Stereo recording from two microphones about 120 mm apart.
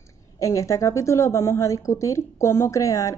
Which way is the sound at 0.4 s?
25° left (ahead or behind).